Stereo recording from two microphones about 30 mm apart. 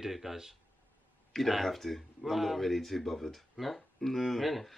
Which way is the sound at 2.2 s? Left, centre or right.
Centre.